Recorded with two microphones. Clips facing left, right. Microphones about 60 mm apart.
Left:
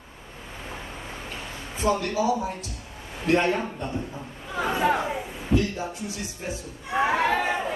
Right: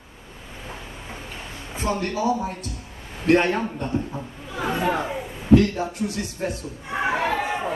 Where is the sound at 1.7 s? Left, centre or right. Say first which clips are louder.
Left 1 dB; right.